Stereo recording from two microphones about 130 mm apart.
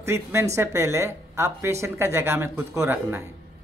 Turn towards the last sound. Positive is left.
turn(degrees=-20)  # may be behind; listen again after turning